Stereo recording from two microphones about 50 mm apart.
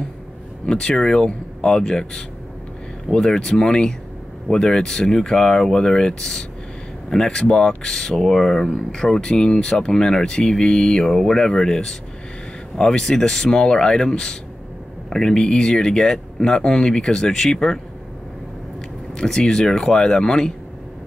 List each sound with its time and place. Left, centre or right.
0.7 s speech: centre
13.0 s speech: centre
19.1 s speech: centre